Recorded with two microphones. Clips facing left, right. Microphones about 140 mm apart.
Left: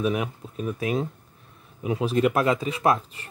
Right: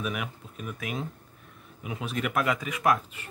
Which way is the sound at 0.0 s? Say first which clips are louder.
Left 8 dB; 30° left (ahead or behind).